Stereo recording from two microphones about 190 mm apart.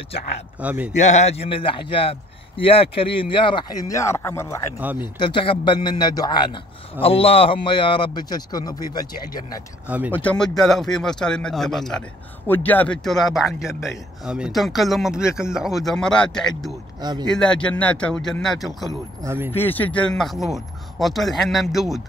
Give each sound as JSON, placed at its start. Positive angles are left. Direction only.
{"t": 0.6, "sound": "a man's voice", "side_deg": -10}
{"t": 0.9, "sound": "a man's voice", "side_deg": 35}
{"t": 9.8, "sound": "a man's voice", "side_deg": -10}
{"t": 10.1, "sound": "speech", "side_deg": 5}
{"t": 17.0, "sound": "speech", "side_deg": -20}
{"t": 17.3, "sound": "speech", "side_deg": 5}
{"t": 19.2, "sound": "a man's voice", "side_deg": -10}
{"t": 19.5, "sound": "speech", "side_deg": 10}